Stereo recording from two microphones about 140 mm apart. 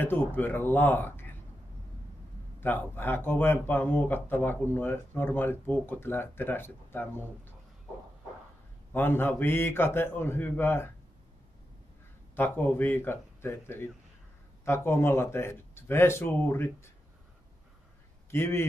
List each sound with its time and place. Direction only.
0.0 s speech: 15° left (ahead or behind)
2.6 s speech: 15° left (ahead or behind)
8.9 s speech: 15° left (ahead or behind)
12.4 s speech: 15° left (ahead or behind)
18.3 s speech: 20° left (ahead or behind)